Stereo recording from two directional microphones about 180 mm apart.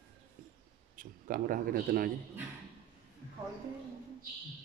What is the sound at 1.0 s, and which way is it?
Speech, 50° right (ahead or behind).